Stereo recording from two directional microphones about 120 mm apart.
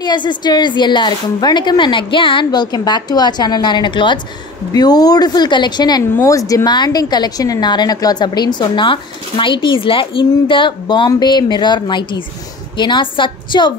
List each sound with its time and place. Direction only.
0.0 s a woman's voice: 40° left (ahead or behind)